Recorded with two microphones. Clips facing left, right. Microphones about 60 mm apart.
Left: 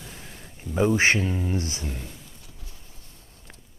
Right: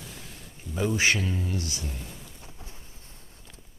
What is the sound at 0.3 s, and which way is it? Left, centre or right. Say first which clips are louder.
Speech: left 4 dB; left.